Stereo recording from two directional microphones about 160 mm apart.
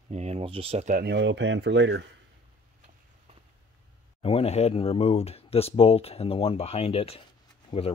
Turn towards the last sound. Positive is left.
turn(degrees=35)  # may be behind; listen again after turning